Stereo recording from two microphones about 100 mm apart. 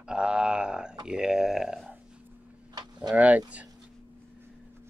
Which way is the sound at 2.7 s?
45° right (ahead or behind).